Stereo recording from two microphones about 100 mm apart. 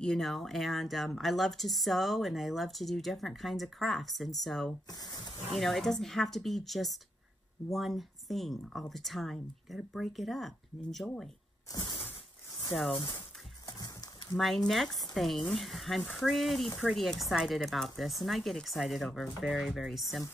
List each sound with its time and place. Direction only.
0.0 s a woman's voice: 5° left (ahead or behind)
4.8 s speech: 40° left (ahead or behind)
5.5 s a woman's voice: centre (ahead or behind)
11.7 s shatter: 45° left (ahead or behind)
13.7 s a sound: 40° left (ahead or behind)
14.3 s a woman's voice: centre (ahead or behind)